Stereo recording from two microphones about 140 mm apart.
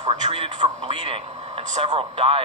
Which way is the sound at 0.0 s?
55° right (ahead or behind).